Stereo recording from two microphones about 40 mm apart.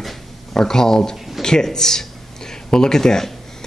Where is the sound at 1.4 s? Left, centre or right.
Centre.